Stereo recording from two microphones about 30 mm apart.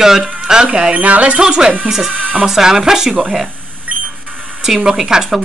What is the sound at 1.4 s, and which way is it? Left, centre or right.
Speech, right.